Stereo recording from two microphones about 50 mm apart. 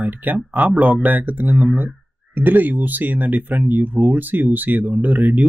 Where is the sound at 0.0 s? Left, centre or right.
Right.